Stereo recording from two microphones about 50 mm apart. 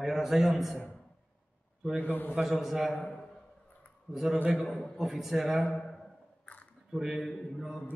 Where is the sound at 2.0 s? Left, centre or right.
Left.